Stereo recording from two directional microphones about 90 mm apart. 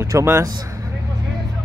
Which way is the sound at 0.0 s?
30° right (ahead or behind).